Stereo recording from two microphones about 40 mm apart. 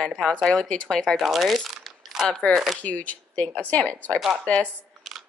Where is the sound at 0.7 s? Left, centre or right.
Left.